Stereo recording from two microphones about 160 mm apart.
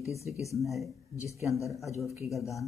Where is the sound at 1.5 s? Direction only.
20° left (ahead or behind).